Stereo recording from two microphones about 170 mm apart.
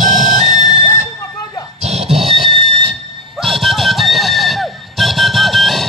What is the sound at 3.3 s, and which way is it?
Music, centre (ahead or behind).